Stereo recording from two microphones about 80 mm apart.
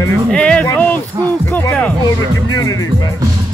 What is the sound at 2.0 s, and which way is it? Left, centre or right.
Speech, left.